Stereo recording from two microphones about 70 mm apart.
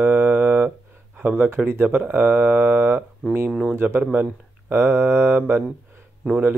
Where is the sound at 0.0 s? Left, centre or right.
Right.